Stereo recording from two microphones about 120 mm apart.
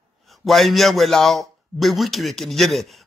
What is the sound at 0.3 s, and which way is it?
Speech, centre (ahead or behind).